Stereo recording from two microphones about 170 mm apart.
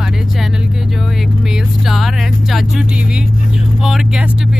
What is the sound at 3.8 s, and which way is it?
Speech, centre (ahead or behind).